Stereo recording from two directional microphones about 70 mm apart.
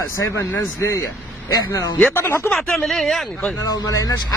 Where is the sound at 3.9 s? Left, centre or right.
Left.